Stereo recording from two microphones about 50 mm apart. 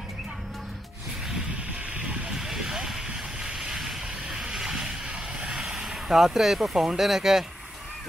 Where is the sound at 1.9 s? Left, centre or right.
Right.